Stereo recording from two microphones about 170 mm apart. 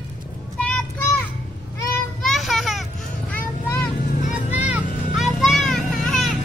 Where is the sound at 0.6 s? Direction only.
5° left (ahead or behind).